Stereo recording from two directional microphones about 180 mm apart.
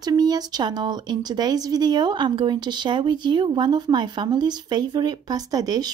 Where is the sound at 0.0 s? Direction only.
20° right (ahead or behind).